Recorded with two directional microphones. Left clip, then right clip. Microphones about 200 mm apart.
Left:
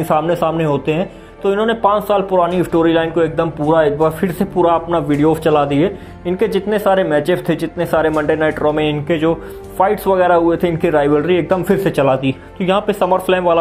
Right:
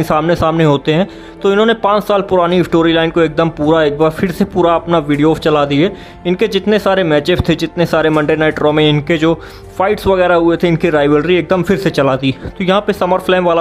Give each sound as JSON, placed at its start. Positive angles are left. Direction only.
{"t": 0.1, "sound": "speech", "side_deg": -20}